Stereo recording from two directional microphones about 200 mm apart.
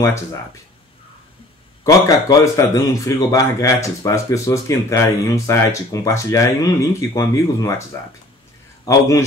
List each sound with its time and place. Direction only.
0.0 s speech: 15° left (ahead or behind)
1.9 s speech: 15° left (ahead or behind)